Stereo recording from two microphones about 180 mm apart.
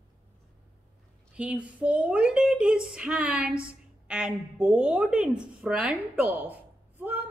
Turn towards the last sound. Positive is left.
turn(degrees=-10)  # may be behind; listen again after turning